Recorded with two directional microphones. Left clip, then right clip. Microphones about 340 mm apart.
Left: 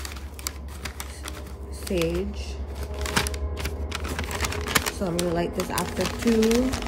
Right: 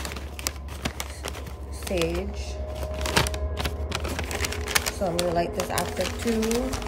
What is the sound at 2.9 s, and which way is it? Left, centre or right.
Computer keyboard, centre.